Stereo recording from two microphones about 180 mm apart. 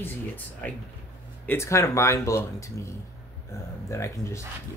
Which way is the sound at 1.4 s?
15° left (ahead or behind).